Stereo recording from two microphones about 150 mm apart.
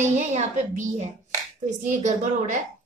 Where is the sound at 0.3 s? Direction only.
50° right (ahead or behind).